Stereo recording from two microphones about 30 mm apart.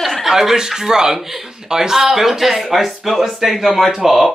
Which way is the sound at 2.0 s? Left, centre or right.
Centre.